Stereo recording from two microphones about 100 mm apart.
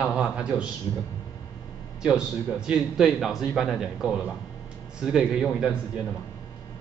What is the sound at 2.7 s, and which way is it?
A man's voice, 5° right (ahead or behind).